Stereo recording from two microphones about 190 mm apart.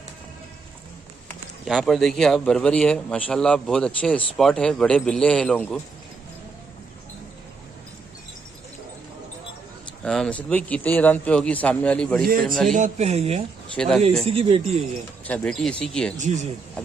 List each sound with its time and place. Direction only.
1.6 s a man's voice: centre (ahead or behind)
10.0 s a man's voice: 5° left (ahead or behind)
12.3 s a man's voice: 45° right (ahead or behind)
13.7 s a man's voice: centre (ahead or behind)
14.2 s speech: 30° right (ahead or behind)
15.2 s a man's voice: 5° left (ahead or behind)
16.2 s speech: 35° right (ahead or behind)